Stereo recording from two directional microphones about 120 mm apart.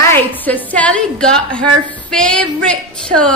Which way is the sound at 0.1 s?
15° left (ahead or behind).